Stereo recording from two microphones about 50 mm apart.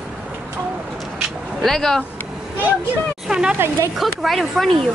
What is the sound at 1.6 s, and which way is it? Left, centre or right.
Speech, centre.